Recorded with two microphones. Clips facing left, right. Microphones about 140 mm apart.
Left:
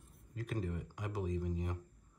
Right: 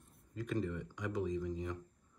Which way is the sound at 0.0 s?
5° left (ahead or behind).